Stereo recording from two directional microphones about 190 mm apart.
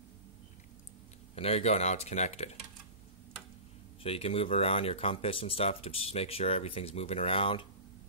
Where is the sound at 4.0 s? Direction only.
30° left (ahead or behind).